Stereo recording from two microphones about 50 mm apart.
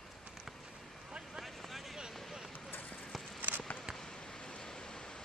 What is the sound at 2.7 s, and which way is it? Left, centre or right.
Clip-clop, left.